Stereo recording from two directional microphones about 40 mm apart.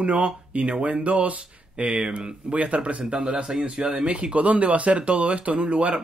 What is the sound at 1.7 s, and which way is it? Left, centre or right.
Speech, right.